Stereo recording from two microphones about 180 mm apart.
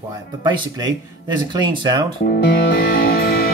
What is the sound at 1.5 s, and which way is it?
Speech, 25° right (ahead or behind).